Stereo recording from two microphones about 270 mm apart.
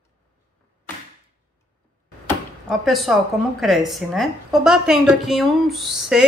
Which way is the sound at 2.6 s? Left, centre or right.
Centre.